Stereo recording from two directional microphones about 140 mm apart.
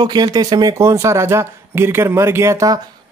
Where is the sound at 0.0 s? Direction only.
30° right (ahead or behind).